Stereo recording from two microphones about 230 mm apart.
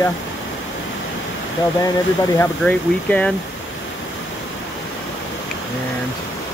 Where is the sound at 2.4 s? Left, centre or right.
Centre.